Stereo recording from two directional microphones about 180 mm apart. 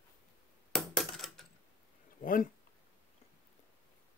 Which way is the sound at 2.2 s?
50° left (ahead or behind).